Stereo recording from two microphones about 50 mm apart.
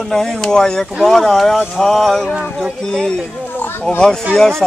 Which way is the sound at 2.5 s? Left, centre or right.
Centre.